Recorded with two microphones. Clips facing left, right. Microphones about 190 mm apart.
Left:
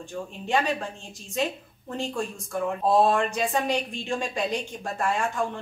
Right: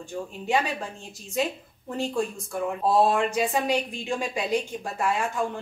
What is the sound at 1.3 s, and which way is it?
Speech, 5° right (ahead or behind).